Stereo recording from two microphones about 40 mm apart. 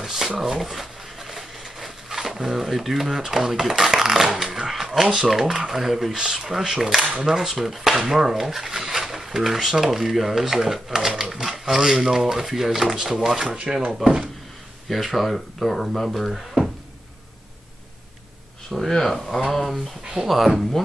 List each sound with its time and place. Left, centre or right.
0.0 s a sound: centre
0.4 s speech: centre
5.0 s speech: centre
6.1 s speech: centre
14.9 s speech: centre
18.9 s speech: centre